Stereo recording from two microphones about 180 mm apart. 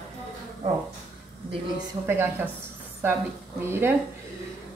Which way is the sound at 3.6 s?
15° right (ahead or behind).